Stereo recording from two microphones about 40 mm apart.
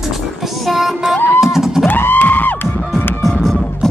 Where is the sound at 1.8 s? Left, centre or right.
Left.